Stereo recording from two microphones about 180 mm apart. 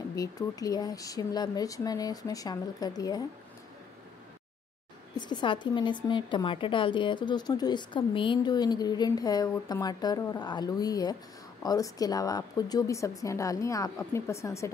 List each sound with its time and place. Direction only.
0.1 s a woman's voice: 20° left (ahead or behind)
5.1 s a woman's voice: 25° left (ahead or behind)